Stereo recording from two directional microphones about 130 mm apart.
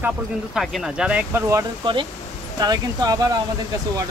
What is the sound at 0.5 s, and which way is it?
Speech, 5° right (ahead or behind).